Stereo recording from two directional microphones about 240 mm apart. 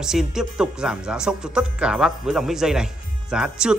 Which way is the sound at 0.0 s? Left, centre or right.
Centre.